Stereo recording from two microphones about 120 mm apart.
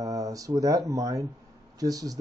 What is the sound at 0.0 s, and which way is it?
Speech, 30° right (ahead or behind).